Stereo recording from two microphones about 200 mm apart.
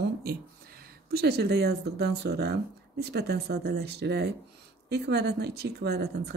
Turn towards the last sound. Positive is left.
turn(degrees=-55)  # may be behind; listen again after turning